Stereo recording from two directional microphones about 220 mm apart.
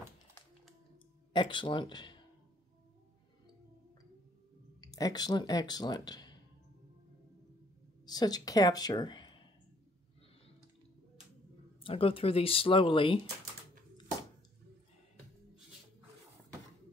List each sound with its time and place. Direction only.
1.3 s speech: 20° left (ahead or behind)
4.7 s speech: 20° left (ahead or behind)
8.0 s speech: 20° left (ahead or behind)
11.8 s speech: 25° left (ahead or behind)